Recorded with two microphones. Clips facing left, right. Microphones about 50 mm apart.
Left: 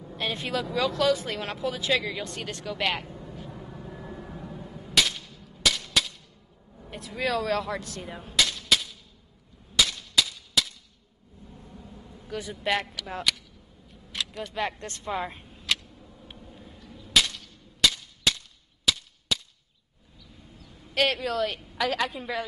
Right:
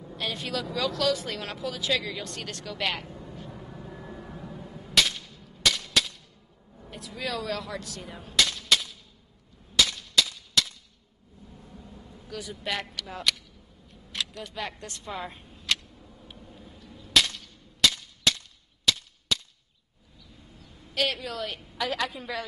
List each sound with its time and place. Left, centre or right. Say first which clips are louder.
0.2 s speech: left 2 dB; left
2.0 s vehicle: left 2 dB; centre
6.9 s speech: left 5 dB; left
8.0 s a sound: right 1 dB; centre
12.3 s a man's voice: left 3 dB; left
13.0 s a woman's voice: left 2 dB; centre
14.1 s a sound: left 1 dB; centre
14.8 s speech: left 3 dB; left
15.2 s vehicle: left 1 dB; centre
16.3 s cap gun: left 1 dB; centre
20.9 s speech: left 4 dB; left
21.8 s a woman's voice: left 2 dB; centre